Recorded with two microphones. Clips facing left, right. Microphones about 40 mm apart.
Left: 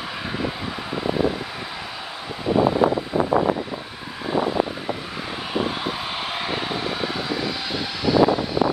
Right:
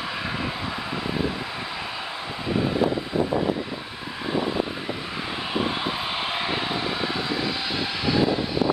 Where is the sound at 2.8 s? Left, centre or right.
Left.